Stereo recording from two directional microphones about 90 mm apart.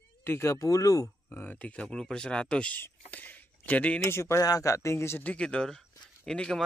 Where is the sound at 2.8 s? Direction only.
20° left (ahead or behind).